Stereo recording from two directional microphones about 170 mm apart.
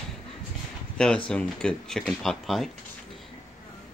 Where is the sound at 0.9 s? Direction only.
5° left (ahead or behind).